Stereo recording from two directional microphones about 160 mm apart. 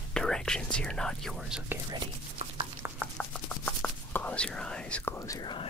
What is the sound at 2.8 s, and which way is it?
Chopping, 15° right (ahead or behind).